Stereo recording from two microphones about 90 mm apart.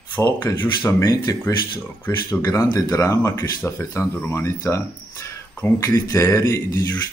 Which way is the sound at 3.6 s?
25° left (ahead or behind).